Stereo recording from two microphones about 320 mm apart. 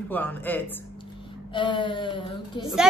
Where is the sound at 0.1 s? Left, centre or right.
Centre.